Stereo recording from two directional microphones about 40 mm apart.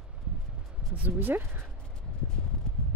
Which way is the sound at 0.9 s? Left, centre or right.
Right.